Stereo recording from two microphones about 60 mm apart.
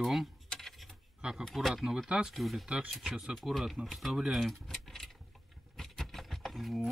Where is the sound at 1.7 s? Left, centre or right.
Centre.